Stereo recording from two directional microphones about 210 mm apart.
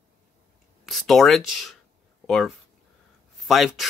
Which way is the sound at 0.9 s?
Centre (ahead or behind).